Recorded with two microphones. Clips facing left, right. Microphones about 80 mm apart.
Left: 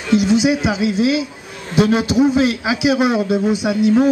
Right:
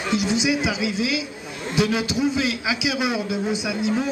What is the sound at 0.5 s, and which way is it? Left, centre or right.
A man's voice, left.